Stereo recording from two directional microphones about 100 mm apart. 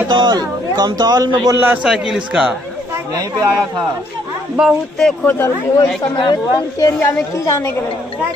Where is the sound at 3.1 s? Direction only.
40° right (ahead or behind).